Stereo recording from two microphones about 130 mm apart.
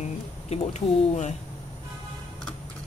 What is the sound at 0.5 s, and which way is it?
Speech, 60° left (ahead or behind).